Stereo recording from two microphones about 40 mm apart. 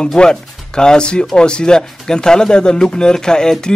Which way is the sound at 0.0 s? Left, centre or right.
Centre.